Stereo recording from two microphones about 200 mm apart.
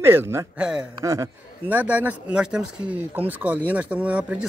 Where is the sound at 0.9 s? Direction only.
15° right (ahead or behind).